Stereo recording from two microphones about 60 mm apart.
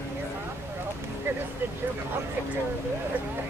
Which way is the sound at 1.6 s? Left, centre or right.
Right.